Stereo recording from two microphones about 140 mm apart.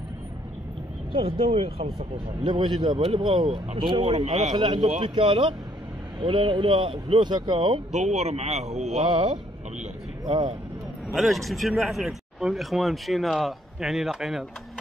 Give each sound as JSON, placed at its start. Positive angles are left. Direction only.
{"t": 1.1, "sound": "speech", "side_deg": -40}
{"t": 4.6, "sound": "speech", "side_deg": -35}
{"t": 7.9, "sound": "speech", "side_deg": -50}
{"t": 9.1, "sound": "speech", "side_deg": -35}
{"t": 11.1, "sound": "speech", "side_deg": 0}